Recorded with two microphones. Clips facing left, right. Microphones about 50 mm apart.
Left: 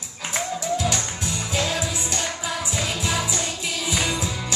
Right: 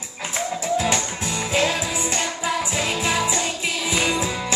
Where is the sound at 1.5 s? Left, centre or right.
Right.